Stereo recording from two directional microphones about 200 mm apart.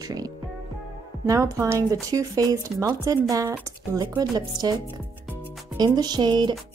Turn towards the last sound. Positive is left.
turn(degrees=-20)  # may be behind; listen again after turning